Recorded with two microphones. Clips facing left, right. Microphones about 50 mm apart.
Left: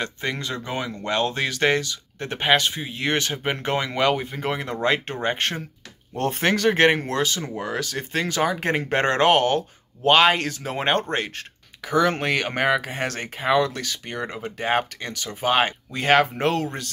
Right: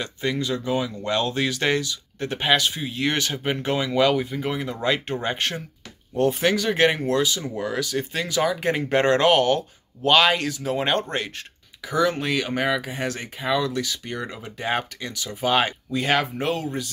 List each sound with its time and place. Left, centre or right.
0.0 s speech: left
4.8 s speech: left
6.1 s speech: left
6.7 s speech: left
7.5 s speech: left
13.4 s speech: left